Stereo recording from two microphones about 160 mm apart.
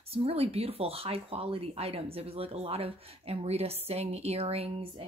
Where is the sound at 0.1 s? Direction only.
35° right (ahead or behind).